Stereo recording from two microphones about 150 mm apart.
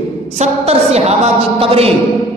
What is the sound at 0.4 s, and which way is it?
A man's voice, 45° right (ahead or behind).